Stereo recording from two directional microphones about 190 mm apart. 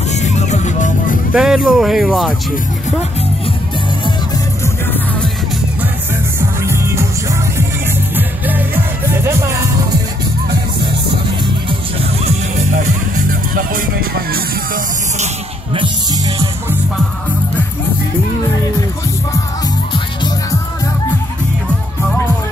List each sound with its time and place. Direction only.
0.1 s music: 35° left (ahead or behind)
1.3 s speech: 5° right (ahead or behind)
6.6 s music: 15° right (ahead or behind)
12.3 s music: 35° right (ahead or behind)